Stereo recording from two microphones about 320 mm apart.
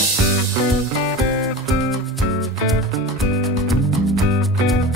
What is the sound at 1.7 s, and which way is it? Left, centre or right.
Music, centre.